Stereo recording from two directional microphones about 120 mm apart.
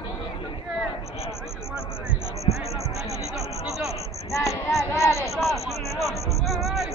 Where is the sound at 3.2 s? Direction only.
5° right (ahead or behind).